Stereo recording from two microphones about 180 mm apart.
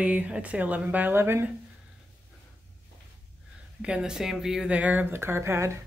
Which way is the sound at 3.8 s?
5° right (ahead or behind).